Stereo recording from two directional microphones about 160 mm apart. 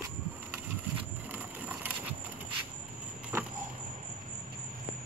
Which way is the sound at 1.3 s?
10° right (ahead or behind).